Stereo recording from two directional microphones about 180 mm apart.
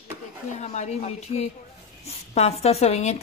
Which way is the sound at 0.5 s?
40° left (ahead or behind).